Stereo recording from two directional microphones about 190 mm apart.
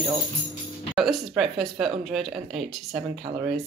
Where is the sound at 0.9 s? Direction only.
Centre (ahead or behind).